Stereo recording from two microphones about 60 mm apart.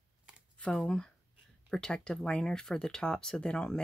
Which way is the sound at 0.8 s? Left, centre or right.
Centre.